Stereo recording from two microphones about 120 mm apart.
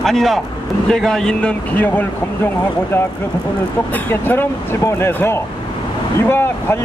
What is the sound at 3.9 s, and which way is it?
Speech, 15° left (ahead or behind).